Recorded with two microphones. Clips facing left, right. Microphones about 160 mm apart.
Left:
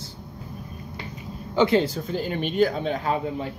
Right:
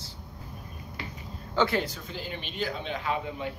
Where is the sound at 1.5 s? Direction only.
15° left (ahead or behind).